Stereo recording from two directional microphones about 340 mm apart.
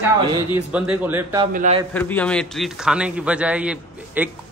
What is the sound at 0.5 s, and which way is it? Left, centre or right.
Speech, centre.